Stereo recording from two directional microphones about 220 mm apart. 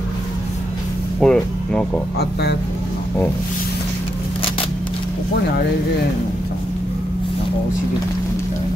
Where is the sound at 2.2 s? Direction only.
50° left (ahead or behind).